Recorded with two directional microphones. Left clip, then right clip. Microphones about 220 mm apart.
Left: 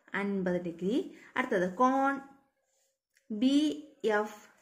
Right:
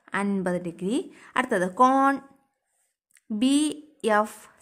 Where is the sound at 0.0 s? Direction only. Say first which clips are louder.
Right 6 dB; 50° right (ahead or behind).